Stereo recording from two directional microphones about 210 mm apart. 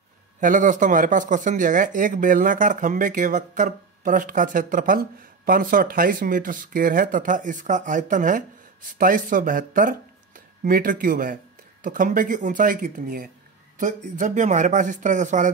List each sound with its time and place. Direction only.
0.4 s speech: 40° right (ahead or behind)